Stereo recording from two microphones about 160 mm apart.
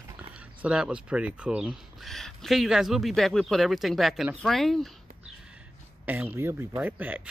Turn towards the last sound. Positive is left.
turn(degrees=-10)  # may be behind; listen again after turning